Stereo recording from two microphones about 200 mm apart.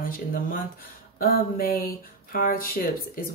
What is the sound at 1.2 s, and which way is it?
Speech, 50° left (ahead or behind).